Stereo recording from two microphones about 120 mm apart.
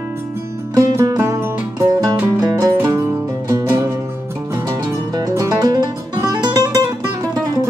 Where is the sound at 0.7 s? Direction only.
25° right (ahead or behind).